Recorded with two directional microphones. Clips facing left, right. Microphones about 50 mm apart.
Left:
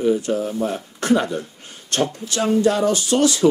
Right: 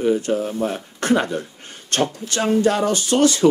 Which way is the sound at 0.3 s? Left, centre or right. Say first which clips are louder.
Right 1 dB; right.